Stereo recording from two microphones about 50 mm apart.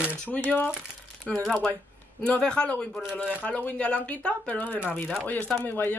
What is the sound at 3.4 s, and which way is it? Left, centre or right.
A woman's voice, left.